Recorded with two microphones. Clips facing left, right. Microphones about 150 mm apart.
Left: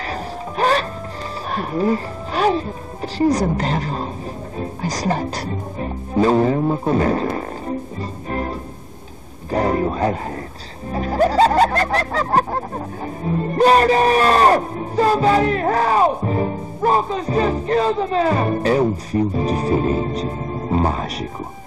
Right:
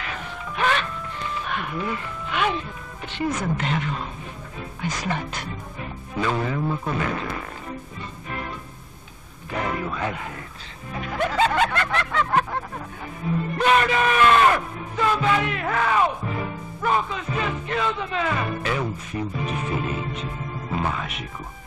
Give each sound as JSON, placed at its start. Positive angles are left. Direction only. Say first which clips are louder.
{"t": 0.0, "sound": "music", "louder": "left 7 dB", "side_deg": 35}
{"t": 1.5, "sound": "speech", "louder": "left 11 dB", "side_deg": 35}
{"t": 4.6, "sound": "music", "louder": "left 5 dB", "side_deg": 35}